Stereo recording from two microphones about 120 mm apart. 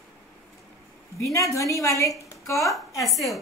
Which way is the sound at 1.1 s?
25° left (ahead or behind).